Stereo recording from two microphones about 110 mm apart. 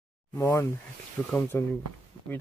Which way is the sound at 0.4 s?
20° left (ahead or behind).